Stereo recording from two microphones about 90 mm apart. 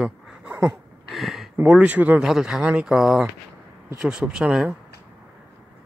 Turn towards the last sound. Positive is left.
turn(degrees=-5)  # may be behind; listen again after turning